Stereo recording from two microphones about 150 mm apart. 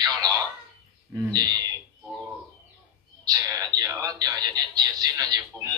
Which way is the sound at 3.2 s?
25° right (ahead or behind).